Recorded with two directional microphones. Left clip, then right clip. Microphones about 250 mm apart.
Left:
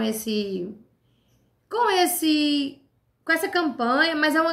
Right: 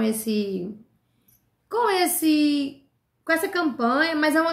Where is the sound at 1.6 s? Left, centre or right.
Centre.